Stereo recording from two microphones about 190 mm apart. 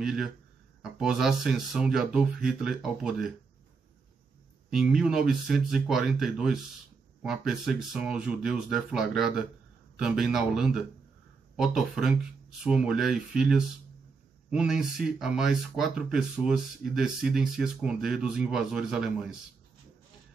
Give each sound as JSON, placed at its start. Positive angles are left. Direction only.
{"t": 0.0, "sound": "speech", "side_deg": -5}
{"t": 4.6, "sound": "speech", "side_deg": 0}